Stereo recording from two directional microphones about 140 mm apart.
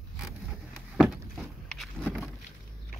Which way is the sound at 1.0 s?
Centre (ahead or behind).